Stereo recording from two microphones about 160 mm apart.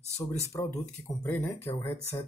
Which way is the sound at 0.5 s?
15° left (ahead or behind).